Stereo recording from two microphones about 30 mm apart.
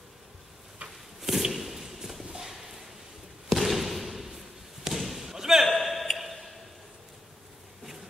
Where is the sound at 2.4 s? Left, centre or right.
Centre.